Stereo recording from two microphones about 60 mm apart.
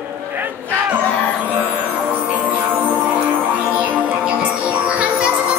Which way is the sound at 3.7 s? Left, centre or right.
Right.